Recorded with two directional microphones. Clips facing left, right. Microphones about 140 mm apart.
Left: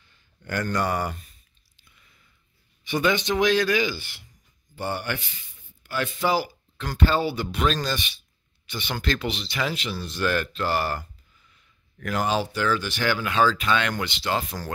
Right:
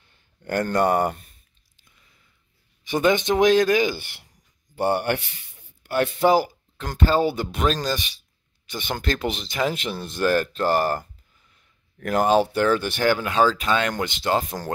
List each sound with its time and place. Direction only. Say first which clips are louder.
0.1 s speech: right 5 dB; 50° right (ahead or behind)
2.8 s speech: right 3 dB; 45° right (ahead or behind)